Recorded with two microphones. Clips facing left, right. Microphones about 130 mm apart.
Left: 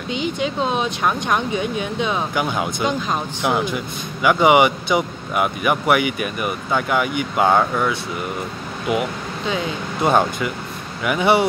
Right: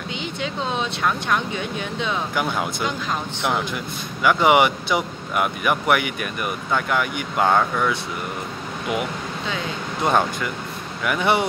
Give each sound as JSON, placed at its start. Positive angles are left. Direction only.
{"t": 0.1, "sound": "speech", "side_deg": 15}
{"t": 2.3, "sound": "speech", "side_deg": 5}
{"t": 10.0, "sound": "speech", "side_deg": 10}